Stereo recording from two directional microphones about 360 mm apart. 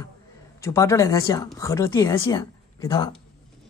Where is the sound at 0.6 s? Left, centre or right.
Centre.